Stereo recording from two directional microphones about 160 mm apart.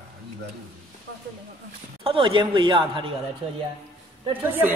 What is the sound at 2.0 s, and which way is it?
Speech, 30° right (ahead or behind).